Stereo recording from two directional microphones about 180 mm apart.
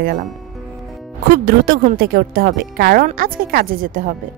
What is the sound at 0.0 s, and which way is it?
Speech, 50° right (ahead or behind).